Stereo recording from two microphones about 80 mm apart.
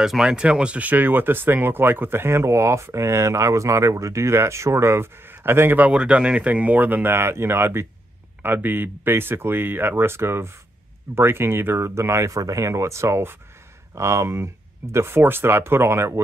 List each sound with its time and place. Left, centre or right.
0.0 s speech: centre; by 5.9 s right
5.9 s speech: centre; by 16.2 s right